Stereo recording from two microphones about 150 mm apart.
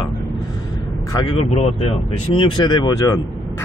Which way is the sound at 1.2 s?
40° left (ahead or behind).